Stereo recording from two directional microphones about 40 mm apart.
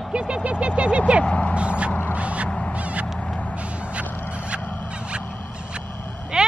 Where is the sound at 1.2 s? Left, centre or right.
Left.